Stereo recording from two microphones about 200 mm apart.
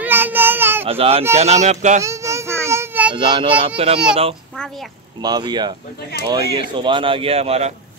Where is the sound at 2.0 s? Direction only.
15° right (ahead or behind).